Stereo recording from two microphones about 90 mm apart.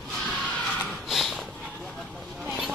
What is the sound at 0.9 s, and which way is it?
Snort, centre (ahead or behind).